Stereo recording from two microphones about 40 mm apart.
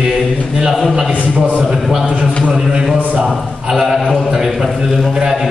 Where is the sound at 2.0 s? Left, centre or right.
Right.